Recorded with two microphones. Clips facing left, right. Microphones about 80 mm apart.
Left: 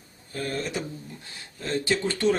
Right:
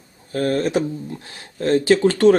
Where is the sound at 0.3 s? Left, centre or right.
Right.